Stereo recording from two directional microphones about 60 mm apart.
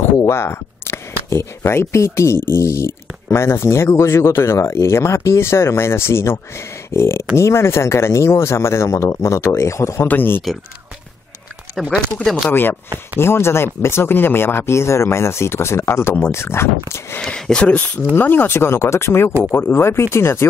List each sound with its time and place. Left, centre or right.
0.3 s speech: left
10.0 s speech: left
12.4 s speech: left
17.2 s speech: centre
18.1 s speech: left